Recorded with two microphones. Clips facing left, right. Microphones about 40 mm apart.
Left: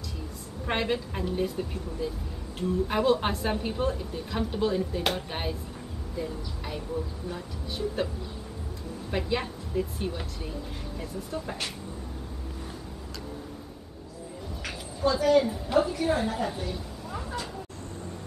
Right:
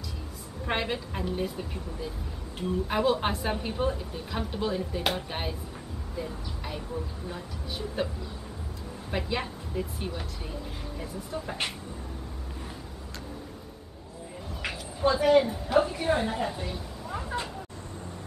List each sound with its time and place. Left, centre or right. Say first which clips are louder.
0.7 s a woman's voice: left 2 dB; centre
9.1 s a woman's voice: left 2 dB; centre
14.6 s a sound: right 1 dB; right
15.4 s a woman's voice: even; centre
15.9 s a woman's voice: even; centre